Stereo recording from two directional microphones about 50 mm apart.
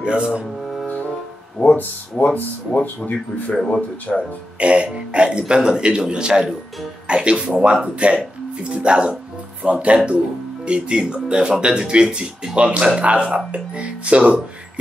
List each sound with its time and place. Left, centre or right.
0.0 s speech: centre
1.8 s speech: left
3.5 s speech: centre
4.6 s a man's voice: right